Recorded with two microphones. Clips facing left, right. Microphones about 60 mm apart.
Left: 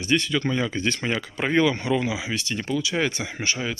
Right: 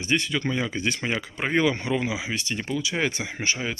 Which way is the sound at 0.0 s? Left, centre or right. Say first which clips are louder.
Left 2 dB; right.